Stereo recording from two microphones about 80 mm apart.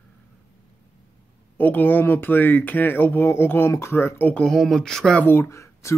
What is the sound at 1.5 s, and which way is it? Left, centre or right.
Speech, left.